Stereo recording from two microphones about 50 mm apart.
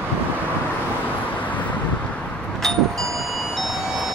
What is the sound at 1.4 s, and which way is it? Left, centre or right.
Vehicle, left.